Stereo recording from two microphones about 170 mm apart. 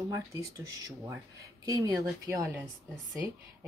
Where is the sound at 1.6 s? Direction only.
20° right (ahead or behind).